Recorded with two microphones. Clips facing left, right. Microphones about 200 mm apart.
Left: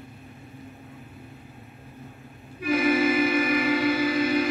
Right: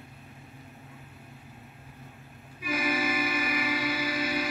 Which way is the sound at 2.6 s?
55° left (ahead or behind).